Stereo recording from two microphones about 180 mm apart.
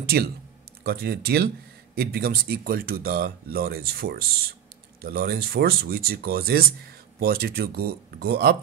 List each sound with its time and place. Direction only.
0.0 s speech: 55° right (ahead or behind)